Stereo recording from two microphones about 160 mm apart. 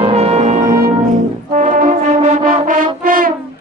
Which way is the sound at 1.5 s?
55° right (ahead or behind).